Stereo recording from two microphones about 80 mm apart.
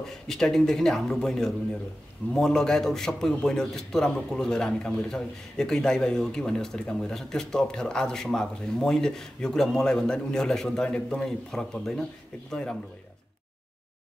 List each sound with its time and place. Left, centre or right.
0.0 s a man's voice: centre